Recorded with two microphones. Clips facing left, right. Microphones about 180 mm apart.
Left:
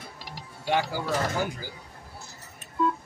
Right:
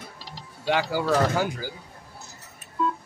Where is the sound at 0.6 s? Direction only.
90° right.